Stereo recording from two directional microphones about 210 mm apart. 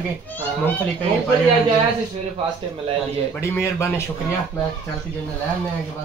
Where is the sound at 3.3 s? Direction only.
15° left (ahead or behind).